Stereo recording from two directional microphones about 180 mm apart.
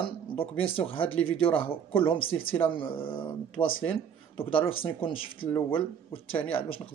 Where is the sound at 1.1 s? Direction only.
90° left.